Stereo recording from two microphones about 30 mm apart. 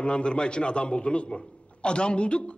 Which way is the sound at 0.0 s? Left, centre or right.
Left.